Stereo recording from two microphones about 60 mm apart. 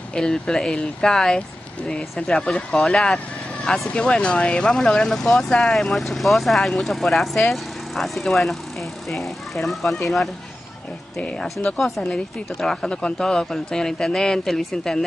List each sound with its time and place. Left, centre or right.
0.1 s speech: centre
11.1 s speech: left
11.6 s speech: centre